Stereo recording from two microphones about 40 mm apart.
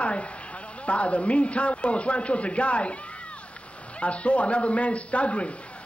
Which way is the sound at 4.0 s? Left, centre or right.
Left.